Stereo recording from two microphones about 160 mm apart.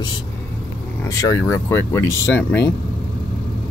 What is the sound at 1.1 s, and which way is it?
Speech, 20° left (ahead or behind).